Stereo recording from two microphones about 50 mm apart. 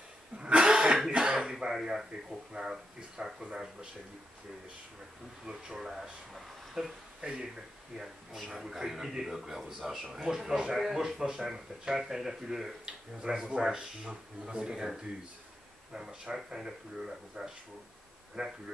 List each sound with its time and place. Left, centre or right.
0.4 s cough: centre
1.1 s throat clearing: centre
1.7 s speech: centre
5.4 s speech: centre
6.3 s a sound: centre
8.0 s speech: centre
15.9 s speech: centre